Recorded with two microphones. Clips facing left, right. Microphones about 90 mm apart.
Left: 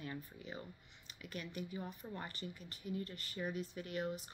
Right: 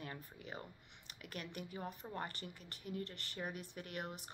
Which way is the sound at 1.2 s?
60° right (ahead or behind).